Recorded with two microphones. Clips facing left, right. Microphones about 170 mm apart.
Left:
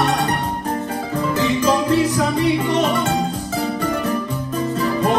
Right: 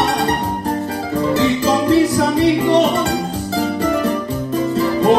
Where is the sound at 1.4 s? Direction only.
35° right (ahead or behind).